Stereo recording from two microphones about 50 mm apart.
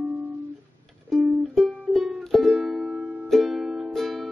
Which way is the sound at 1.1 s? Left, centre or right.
Centre.